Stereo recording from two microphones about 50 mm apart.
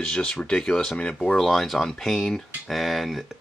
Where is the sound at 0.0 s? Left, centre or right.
Centre.